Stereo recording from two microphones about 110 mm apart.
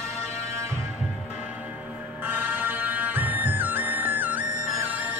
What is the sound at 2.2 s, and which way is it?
Music, 15° right (ahead or behind).